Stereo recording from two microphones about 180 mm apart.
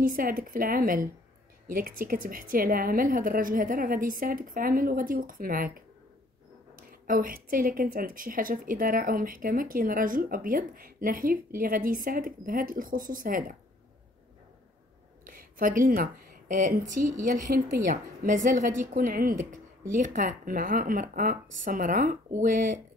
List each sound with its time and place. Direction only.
0.0 s a woman's voice: 50° right (ahead or behind)
15.2 s a woman's voice: 50° right (ahead or behind)